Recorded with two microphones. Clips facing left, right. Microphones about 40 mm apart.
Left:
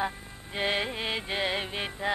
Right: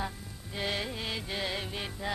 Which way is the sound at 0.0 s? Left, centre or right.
Left.